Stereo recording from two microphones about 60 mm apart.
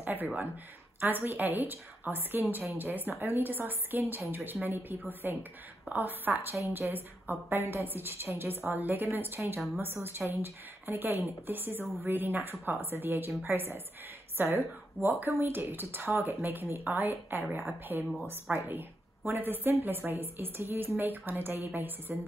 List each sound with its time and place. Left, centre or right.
0.0 s a woman's voice: right